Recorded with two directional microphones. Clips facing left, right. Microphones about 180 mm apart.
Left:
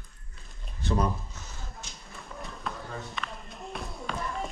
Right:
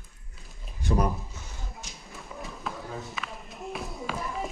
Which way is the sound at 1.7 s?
Centre (ahead or behind).